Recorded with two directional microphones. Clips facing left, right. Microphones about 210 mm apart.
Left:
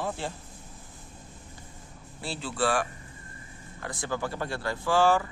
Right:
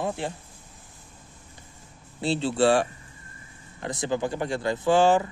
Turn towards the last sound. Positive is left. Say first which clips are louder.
# right 4 dB
turn(degrees=-20)  # may be behind; listen again after turning